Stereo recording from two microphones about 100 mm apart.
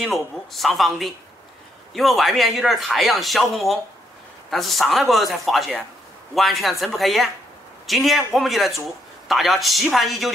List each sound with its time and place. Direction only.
0.5 s speech: centre (ahead or behind)